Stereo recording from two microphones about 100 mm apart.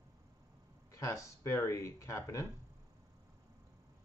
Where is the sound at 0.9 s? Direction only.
30° left (ahead or behind).